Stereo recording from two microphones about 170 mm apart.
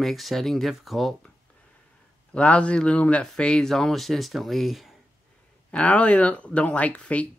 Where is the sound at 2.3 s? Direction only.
5° left (ahead or behind).